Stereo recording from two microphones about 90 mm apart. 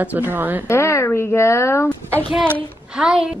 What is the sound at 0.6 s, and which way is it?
Speech, 30° left (ahead or behind).